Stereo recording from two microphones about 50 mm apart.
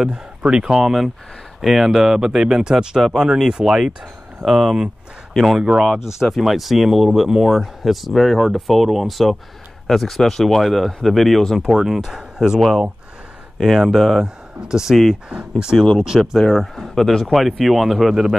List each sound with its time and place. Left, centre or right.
0.1 s speech: right
0.7 s speech: centre
5.6 s speech: centre
6.2 s speech: centre
16.2 s speech: centre